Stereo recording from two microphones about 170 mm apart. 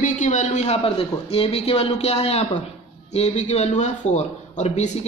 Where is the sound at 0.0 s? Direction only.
45° left (ahead or behind).